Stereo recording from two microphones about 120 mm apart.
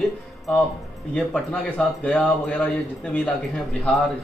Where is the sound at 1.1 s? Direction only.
5° left (ahead or behind).